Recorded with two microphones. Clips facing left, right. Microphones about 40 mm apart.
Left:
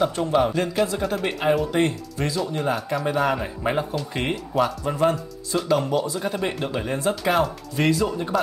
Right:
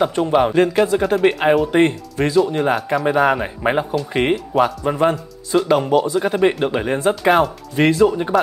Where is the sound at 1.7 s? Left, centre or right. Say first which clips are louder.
Right 8 dB; right.